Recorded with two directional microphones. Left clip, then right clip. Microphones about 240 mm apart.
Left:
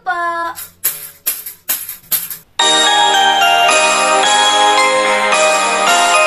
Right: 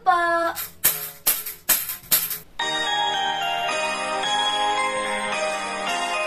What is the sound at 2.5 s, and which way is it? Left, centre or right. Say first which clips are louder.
Music: left 13 dB; left.